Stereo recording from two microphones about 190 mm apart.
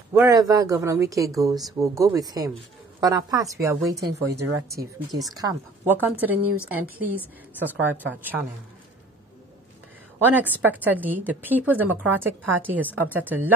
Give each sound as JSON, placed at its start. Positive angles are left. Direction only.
{"t": 0.1, "sound": "a woman's voice", "side_deg": -15}
{"t": 10.1, "sound": "a woman's voice", "side_deg": -10}